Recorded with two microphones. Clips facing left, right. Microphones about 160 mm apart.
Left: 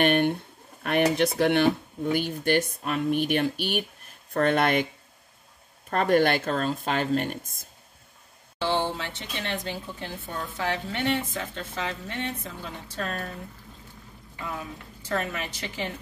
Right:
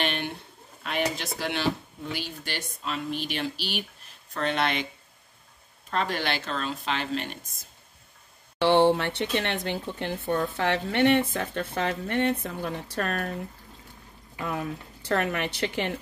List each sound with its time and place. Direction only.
0.0 s a sound: 55° left (ahead or behind)
0.8 s speech: 55° left (ahead or behind)
5.9 s speech: 50° left (ahead or behind)
8.5 s speech: 65° right (ahead or behind)
14.4 s speech: 65° right (ahead or behind)